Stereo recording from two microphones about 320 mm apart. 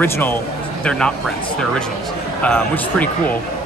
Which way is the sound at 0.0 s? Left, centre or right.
Centre.